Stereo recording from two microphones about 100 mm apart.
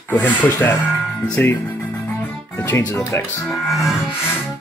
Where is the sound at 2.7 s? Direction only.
25° left (ahead or behind).